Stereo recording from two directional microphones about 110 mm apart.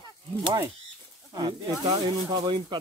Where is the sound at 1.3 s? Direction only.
40° right (ahead or behind).